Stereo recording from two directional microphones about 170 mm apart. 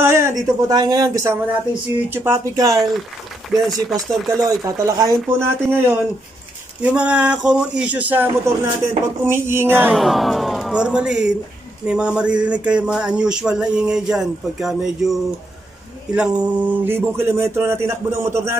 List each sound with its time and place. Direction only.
0.0 s a man's voice: 15° right (ahead or behind)
4.4 s a man's voice: 20° right (ahead or behind)
9.9 s a man's voice: centre (ahead or behind); by 18.6 s 15° right (ahead or behind)